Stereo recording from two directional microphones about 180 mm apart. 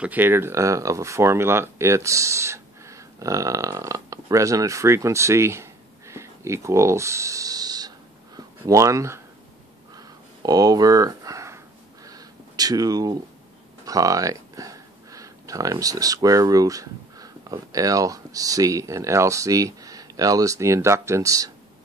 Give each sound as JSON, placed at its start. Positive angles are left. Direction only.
{"t": 0.0, "sound": "speech", "side_deg": -10}
{"t": 9.9, "sound": "a sound", "side_deg": -20}
{"t": 13.8, "sound": "speech", "side_deg": -20}